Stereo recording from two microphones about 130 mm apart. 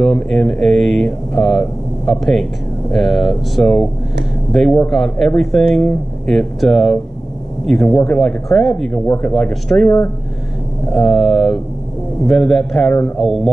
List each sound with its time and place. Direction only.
0.0 s speech: 5° left (ahead or behind)
9.8 s speech: 20° left (ahead or behind)
10.9 s speech: centre (ahead or behind)